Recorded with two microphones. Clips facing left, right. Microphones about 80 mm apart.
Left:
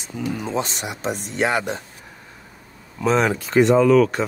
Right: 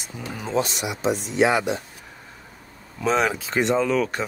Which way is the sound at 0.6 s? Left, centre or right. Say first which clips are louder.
Right 1 dB; left.